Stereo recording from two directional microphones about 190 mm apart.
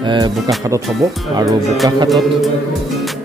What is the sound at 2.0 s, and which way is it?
Music, centre (ahead or behind).